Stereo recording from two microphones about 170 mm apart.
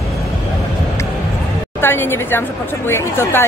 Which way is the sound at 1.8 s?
15° left (ahead or behind).